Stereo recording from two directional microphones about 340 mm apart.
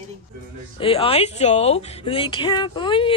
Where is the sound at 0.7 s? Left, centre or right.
Centre.